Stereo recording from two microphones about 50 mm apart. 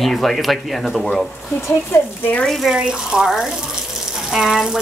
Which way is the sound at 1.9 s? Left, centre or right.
Left.